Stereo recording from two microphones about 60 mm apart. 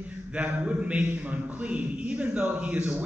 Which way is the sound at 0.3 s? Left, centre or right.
Centre.